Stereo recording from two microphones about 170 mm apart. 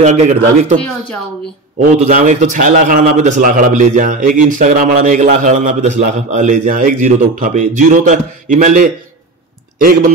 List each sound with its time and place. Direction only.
0.0 s a man's voice: 40° right (ahead or behind)
1.8 s a man's voice: 50° right (ahead or behind)